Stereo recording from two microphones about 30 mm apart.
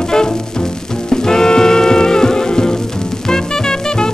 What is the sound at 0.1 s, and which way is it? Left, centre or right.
Music, left.